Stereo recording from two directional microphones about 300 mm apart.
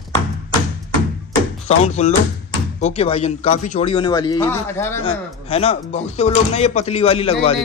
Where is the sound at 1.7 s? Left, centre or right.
Left.